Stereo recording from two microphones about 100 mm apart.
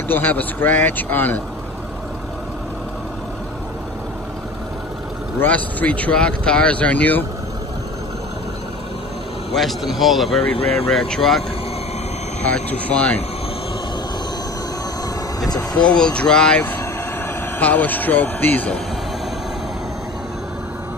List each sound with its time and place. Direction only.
0.1 s speech: 15° left (ahead or behind)
5.4 s speech: 15° left (ahead or behind)
9.6 s speech: centre (ahead or behind)
12.4 s speech: 15° left (ahead or behind)
15.7 s speech: 10° left (ahead or behind)